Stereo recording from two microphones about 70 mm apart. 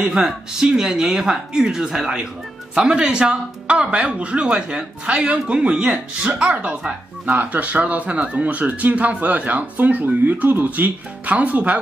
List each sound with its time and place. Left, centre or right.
0.0 s speech: centre